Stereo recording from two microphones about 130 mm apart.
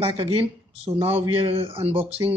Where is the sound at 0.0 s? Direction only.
45° right (ahead or behind).